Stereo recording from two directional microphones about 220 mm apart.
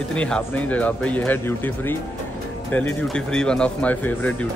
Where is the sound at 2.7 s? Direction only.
5° left (ahead or behind).